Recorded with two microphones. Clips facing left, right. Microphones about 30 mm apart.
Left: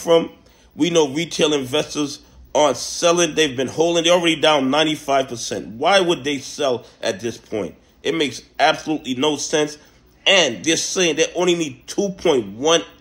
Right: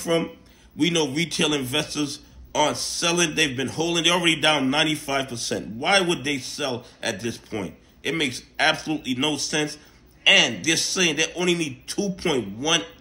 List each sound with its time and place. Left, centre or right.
0.1 s speech: centre
0.7 s a man's voice: right